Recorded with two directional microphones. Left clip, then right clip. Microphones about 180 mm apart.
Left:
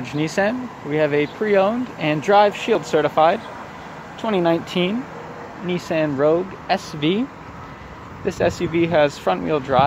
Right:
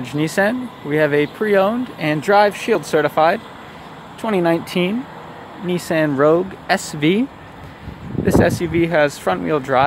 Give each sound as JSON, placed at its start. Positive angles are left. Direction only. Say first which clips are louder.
{"t": 0.0, "sound": "speech", "louder": "right 3 dB", "side_deg": -20}
{"t": 8.3, "sound": "speech", "louder": "right 4 dB", "side_deg": -15}